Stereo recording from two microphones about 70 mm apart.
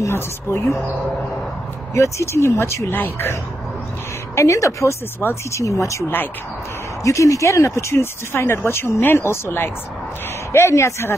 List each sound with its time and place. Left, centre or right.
0.0 s speech: left
2.0 s speech: left
2.9 s speech: left
4.4 s speech: left